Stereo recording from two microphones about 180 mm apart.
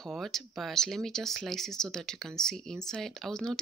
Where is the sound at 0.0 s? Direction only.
Centre (ahead or behind).